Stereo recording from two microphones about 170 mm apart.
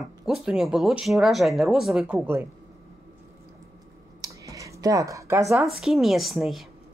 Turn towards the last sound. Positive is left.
turn(degrees=0)  # may be behind; listen again after turning